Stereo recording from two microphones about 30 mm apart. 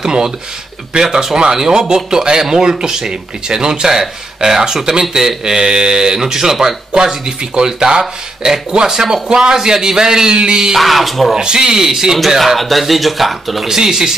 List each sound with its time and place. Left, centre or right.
0.0 s a man's voice: right
3.8 s a man's voice: centre
10.8 s speech: centre
11.3 s a man's voice: right
12.4 s speech: centre
13.7 s a man's voice: centre